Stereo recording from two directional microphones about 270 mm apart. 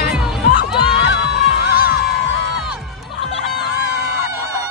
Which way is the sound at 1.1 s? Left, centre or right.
Centre.